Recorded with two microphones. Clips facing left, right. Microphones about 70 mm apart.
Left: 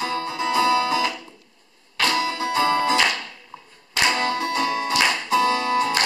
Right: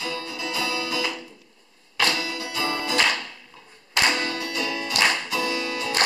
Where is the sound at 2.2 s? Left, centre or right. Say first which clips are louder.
Left 7 dB; left.